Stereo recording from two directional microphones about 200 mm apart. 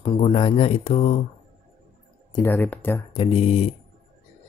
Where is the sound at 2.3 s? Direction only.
10° left (ahead or behind).